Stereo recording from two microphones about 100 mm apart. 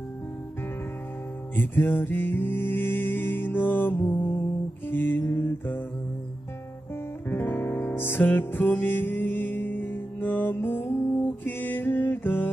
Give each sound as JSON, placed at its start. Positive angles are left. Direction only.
{"t": 1.5, "sound": "music", "side_deg": 20}
{"t": 7.2, "sound": "music", "side_deg": 20}